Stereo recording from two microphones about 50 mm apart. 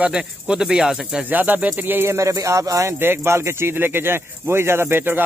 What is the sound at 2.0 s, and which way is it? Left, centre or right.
Speech, right.